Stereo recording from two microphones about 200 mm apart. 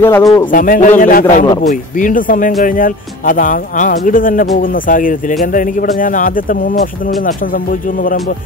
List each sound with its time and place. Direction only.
0.0 s a man's voice: 15° left (ahead or behind)
0.5 s a man's voice: 45° left (ahead or behind)